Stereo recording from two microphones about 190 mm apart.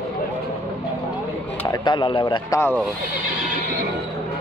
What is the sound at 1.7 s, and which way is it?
Speech, 25° left (ahead or behind).